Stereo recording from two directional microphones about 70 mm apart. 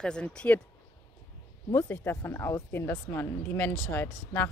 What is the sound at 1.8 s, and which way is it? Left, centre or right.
Speech, left.